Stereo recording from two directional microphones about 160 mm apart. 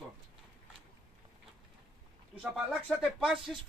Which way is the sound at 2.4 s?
Centre (ahead or behind).